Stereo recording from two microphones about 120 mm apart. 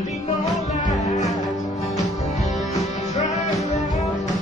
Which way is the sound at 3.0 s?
75° left (ahead or behind).